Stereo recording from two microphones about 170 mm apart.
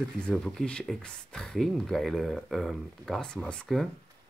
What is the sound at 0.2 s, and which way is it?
Speech, 5° left (ahead or behind).